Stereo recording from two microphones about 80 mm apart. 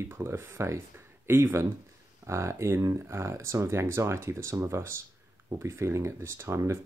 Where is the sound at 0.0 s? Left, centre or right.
Right.